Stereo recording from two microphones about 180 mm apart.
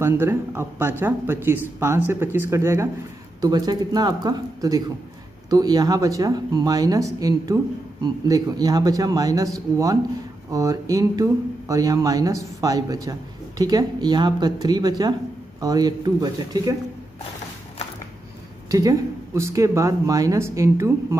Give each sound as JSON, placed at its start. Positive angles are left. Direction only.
{"t": 0.0, "sound": "speech", "side_deg": -15}
{"t": 18.7, "sound": "speech", "side_deg": -20}